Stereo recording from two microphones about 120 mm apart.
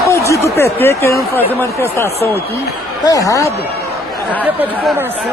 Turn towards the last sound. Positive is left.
turn(degrees=30)  # may be behind; listen again after turning